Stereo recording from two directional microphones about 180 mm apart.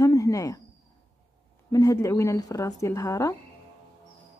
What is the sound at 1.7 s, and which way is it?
Speech, 20° left (ahead or behind).